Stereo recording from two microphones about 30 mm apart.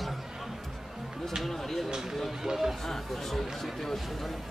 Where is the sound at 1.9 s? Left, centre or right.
Centre.